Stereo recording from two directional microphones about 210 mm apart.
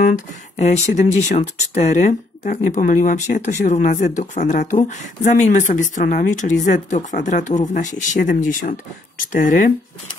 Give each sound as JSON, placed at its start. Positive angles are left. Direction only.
{"t": 0.6, "sound": "speech", "side_deg": 35}